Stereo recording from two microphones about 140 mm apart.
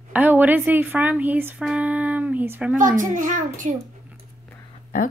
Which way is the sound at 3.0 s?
70° right (ahead or behind).